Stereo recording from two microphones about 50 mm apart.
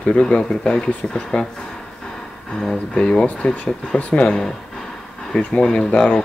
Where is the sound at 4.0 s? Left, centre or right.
Left.